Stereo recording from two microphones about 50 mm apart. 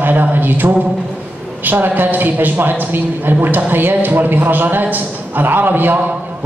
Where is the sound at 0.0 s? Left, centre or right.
Right.